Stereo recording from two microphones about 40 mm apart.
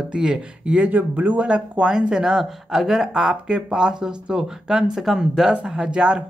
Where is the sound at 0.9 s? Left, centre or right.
Right.